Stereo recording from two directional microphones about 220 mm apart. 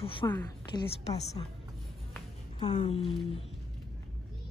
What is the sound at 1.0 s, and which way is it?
Speech, 30° left (ahead or behind).